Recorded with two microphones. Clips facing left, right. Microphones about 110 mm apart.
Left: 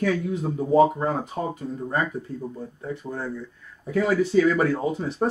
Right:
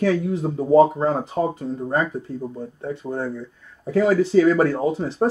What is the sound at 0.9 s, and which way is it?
Speech, 30° right (ahead or behind).